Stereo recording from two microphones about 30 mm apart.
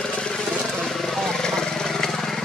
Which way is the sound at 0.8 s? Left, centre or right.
Centre.